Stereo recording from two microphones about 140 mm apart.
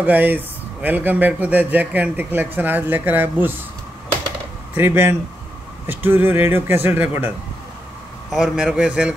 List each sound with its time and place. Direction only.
0.0 s speech: 10° right (ahead or behind)
4.7 s a man's voice: 15° right (ahead or behind)